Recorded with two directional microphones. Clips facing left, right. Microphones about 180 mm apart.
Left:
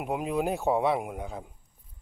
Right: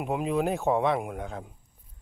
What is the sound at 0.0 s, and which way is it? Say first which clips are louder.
Speech: right 2 dB; 5° left (ahead or behind).